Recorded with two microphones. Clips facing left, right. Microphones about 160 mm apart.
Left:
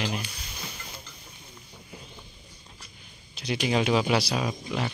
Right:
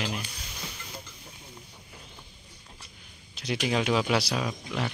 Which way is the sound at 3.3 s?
Centre (ahead or behind).